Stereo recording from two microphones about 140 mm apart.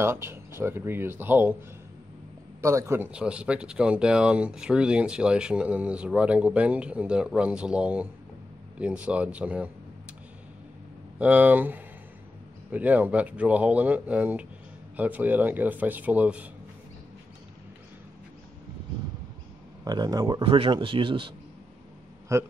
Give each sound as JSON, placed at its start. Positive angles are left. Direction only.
{"t": 0.0, "sound": "speech", "side_deg": -15}
{"t": 2.6, "sound": "speech", "side_deg": -20}
{"t": 3.1, "sound": "speech", "side_deg": -10}
{"t": 11.1, "sound": "speech", "side_deg": -10}
{"t": 19.8, "sound": "speech", "side_deg": -25}
{"t": 22.3, "sound": "speech", "side_deg": -20}